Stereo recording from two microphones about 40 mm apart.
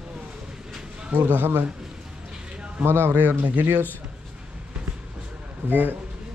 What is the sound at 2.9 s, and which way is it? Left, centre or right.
Speech, right.